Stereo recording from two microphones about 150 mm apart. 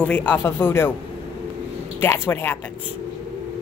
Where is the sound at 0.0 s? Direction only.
10° left (ahead or behind).